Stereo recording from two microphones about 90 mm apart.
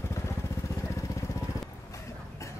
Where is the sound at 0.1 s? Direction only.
30° left (ahead or behind).